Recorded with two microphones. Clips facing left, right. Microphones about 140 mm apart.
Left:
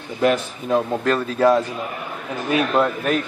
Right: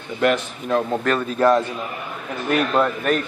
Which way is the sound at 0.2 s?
15° left (ahead or behind).